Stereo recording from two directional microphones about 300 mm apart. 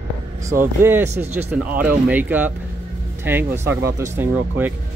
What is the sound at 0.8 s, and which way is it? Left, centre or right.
Speech, centre.